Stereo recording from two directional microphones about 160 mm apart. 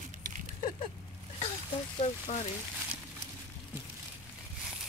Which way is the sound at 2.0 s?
40° left (ahead or behind).